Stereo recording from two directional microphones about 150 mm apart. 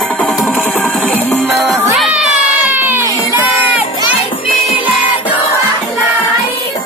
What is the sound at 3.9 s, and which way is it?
Music, 35° left (ahead or behind).